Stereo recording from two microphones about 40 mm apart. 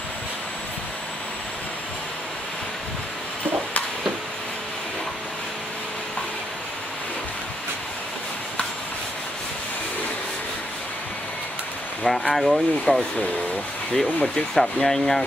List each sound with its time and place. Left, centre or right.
12.1 s speech: centre
12.9 s speech: left
14.2 s speech: centre